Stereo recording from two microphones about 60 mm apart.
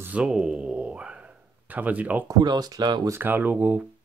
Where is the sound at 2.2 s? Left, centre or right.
Right.